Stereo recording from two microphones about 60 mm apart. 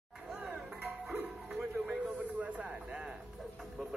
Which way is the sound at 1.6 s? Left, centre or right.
Right.